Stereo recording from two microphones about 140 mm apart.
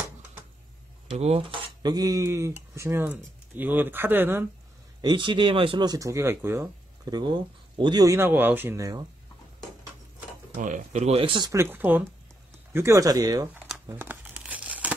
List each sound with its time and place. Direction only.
1.0 s speech: 45° right (ahead or behind); by 4.5 s 15° right (ahead or behind)
5.0 s speech: 35° right (ahead or behind); by 6.7 s 15° right (ahead or behind)
7.1 s speech: 30° right (ahead or behind)
10.5 s speech: 75° right (ahead or behind); by 11.5 s 35° right (ahead or behind)
11.5 s speech: 15° right (ahead or behind)
13.8 s tearing: 15° right (ahead or behind)